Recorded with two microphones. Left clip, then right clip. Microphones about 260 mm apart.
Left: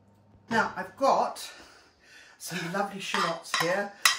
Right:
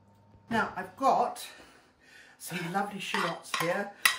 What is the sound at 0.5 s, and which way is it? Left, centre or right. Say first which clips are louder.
Dishes: left 3 dB; centre.